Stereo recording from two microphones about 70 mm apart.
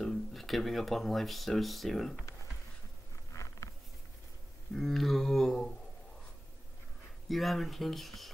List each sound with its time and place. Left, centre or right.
0.0 s speech: centre
3.3 s a sound: left
4.7 s speech: centre
7.2 s speech: centre